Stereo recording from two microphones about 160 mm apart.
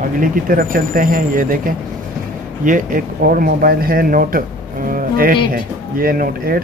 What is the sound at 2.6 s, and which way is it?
Speech, 60° right (ahead or behind).